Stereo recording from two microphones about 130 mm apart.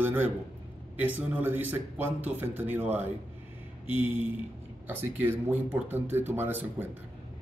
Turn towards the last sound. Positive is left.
turn(degrees=-15)  # may be behind; listen again after turning